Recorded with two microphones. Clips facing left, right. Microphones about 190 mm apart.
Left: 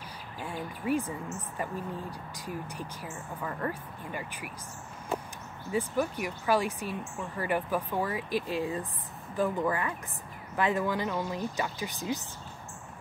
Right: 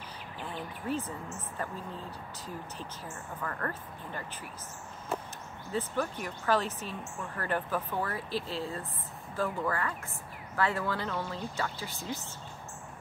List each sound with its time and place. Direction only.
0.4 s speech: 10° left (ahead or behind)
5.7 s speech: 10° left (ahead or behind)